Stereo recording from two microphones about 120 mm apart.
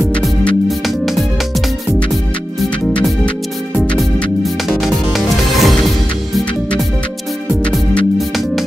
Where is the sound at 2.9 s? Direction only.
10° left (ahead or behind).